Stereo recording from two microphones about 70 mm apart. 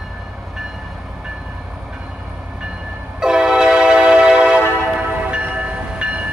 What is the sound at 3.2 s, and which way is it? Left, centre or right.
Train, centre.